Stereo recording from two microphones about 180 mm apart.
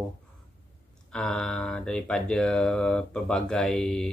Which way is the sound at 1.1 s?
5° left (ahead or behind).